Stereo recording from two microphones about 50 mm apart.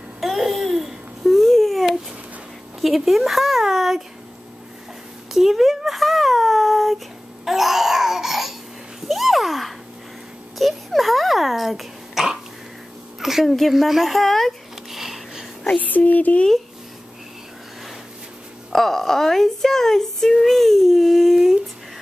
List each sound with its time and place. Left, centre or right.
0.2 s babbling: centre
2.8 s speech: centre
5.3 s a child's voice: centre
7.4 s babbling: centre
9.0 s a sound: centre
10.6 s cough: centre
13.2 s a sound: centre
15.8 s a sound: left
18.7 s speech: centre